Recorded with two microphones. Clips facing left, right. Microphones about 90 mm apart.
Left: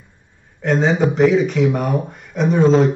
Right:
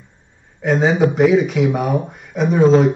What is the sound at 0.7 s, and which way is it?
Speech, centre (ahead or behind).